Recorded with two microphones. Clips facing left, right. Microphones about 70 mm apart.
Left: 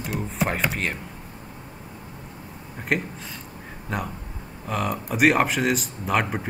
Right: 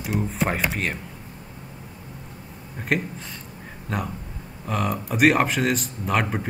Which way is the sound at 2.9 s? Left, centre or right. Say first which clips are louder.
Right 1 dB; centre.